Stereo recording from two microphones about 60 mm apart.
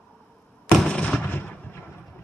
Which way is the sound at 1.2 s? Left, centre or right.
Left.